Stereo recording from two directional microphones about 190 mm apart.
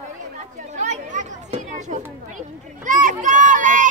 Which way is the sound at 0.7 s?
40° right (ahead or behind).